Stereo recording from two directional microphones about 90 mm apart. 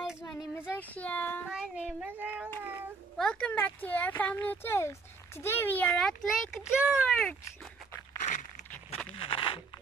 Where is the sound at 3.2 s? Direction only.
10° left (ahead or behind).